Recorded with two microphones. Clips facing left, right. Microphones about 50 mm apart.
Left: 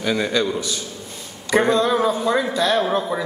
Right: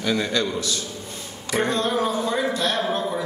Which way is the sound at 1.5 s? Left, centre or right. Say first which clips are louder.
Left 6 dB; left.